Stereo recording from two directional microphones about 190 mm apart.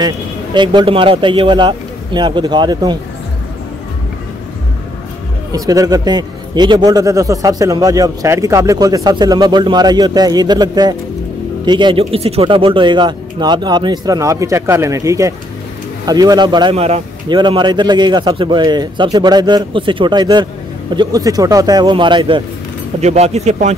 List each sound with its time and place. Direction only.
0.6 s a man's voice: 25° right (ahead or behind)
5.5 s a man's voice: 20° right (ahead or behind)
22.9 s speech: 35° right (ahead or behind)